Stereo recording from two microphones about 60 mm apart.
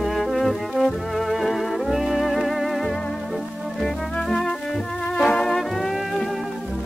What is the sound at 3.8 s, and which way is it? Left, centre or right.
Music, centre.